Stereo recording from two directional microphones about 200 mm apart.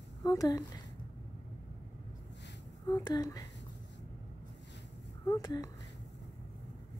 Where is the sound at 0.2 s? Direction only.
20° left (ahead or behind).